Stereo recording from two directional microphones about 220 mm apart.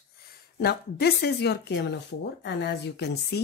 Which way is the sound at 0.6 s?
45° left (ahead or behind).